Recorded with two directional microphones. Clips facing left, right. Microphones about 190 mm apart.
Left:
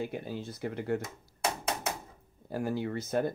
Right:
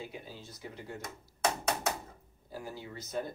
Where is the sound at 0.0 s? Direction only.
60° left (ahead or behind).